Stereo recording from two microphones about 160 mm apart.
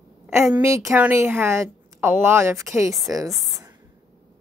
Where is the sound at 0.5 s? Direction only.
20° right (ahead or behind).